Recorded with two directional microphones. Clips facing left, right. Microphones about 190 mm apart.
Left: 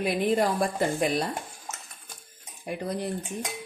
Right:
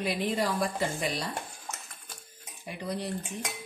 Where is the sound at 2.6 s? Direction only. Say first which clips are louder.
Left 4 dB; 50° left (ahead or behind).